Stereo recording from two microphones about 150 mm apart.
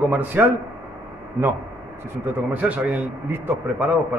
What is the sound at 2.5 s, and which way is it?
A man's voice, 10° right (ahead or behind).